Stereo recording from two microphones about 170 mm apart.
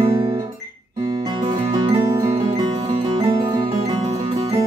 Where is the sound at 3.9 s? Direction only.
35° right (ahead or behind).